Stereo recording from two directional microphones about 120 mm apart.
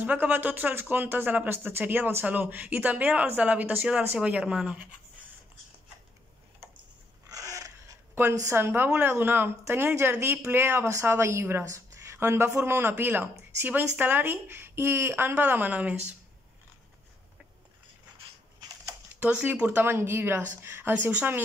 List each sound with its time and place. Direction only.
0.0 s speech: 15° right (ahead or behind)
7.2 s speech: 30° right (ahead or behind); by 16.2 s 10° right (ahead or behind)
19.1 s speech: 10° right (ahead or behind)